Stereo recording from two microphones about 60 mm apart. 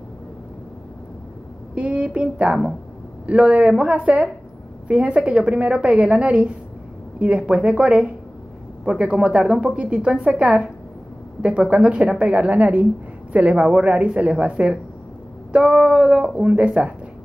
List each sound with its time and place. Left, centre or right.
1.8 s a woman's voice: centre